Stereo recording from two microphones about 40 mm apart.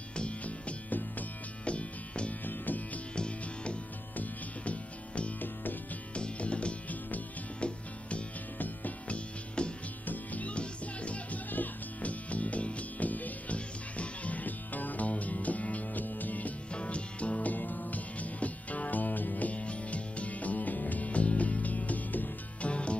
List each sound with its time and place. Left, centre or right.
0.4 s music: left
2.4 s music: left
3.2 s music: left
5.4 s music: left
6.1 s music: left
8.5 s music: left
9.6 s music: left
10.0 s music: left
10.5 s music: left
11.5 s music: left
16.7 s music: left
17.5 s music: left
22.6 s music: left